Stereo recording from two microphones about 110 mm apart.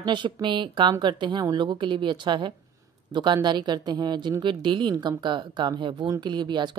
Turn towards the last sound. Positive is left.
turn(degrees=-40)  # may be behind; listen again after turning